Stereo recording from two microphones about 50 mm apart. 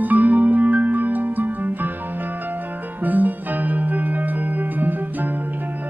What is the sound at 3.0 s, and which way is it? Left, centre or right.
Music, right.